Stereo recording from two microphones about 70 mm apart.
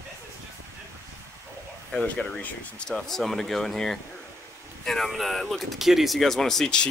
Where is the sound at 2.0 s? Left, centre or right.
Centre.